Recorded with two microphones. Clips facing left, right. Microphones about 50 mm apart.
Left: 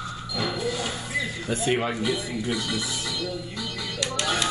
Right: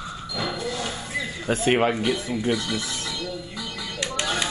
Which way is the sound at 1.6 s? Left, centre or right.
Right.